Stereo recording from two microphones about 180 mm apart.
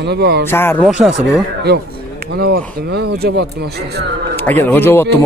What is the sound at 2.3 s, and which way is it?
Speech, 60° right (ahead or behind).